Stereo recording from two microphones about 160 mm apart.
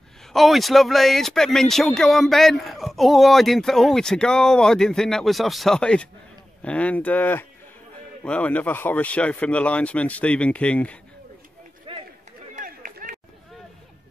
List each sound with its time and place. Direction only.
0.3 s a man's voice: centre (ahead or behind)
11.9 s run: 35° right (ahead or behind)
12.5 s run: 55° right (ahead or behind)